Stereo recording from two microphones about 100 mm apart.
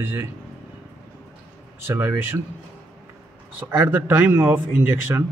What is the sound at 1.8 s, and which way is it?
Speech, 20° right (ahead or behind).